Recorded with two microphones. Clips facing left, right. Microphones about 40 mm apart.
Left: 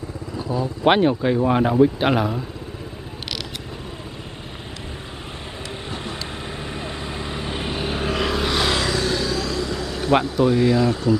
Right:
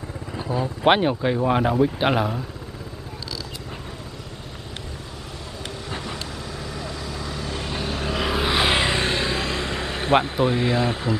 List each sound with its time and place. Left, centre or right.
0.5 s speech: right
0.8 s speech: centre
6.7 s vehicle: left
8.3 s a sound: centre
8.6 s vehicle: right